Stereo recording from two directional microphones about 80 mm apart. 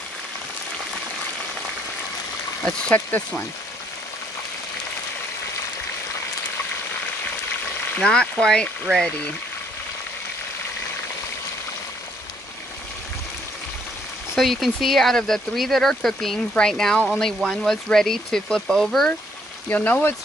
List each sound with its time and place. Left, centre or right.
3.1 s speech: left
7.9 s speech: centre
14.3 s speech: centre
19.7 s speech: left